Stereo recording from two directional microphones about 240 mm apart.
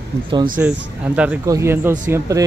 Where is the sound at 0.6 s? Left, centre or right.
Centre.